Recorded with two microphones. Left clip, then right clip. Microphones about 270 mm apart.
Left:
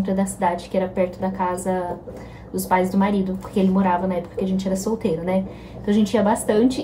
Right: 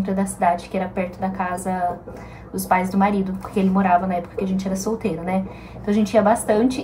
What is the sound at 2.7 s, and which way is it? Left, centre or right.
A woman's voice, centre.